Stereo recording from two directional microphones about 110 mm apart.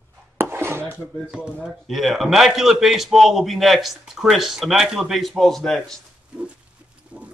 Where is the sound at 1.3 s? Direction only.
5° right (ahead or behind).